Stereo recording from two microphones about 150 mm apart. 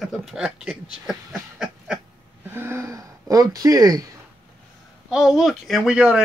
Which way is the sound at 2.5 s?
15° right (ahead or behind).